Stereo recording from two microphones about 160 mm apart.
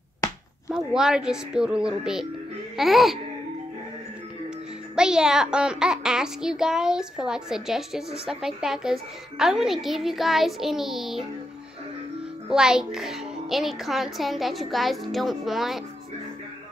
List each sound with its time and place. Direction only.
0.7 s a child's voice: 5° right (ahead or behind)
4.9 s a child's voice: 5° right (ahead or behind)
12.4 s a child's voice: 5° right (ahead or behind)